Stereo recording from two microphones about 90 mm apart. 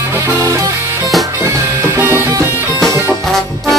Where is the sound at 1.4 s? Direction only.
30° right (ahead or behind).